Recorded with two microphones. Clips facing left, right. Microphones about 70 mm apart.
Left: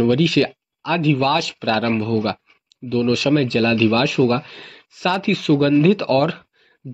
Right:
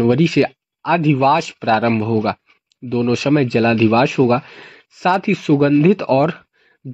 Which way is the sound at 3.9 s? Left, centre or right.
Centre.